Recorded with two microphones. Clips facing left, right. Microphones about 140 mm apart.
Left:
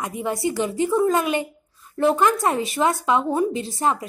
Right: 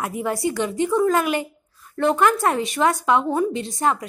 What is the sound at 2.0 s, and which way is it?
Speech, 20° left (ahead or behind).